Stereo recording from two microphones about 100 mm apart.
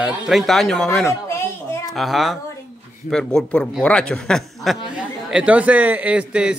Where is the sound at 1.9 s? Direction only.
Centre (ahead or behind).